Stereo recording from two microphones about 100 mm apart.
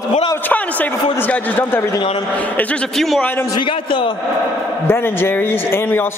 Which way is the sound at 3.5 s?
55° left (ahead or behind).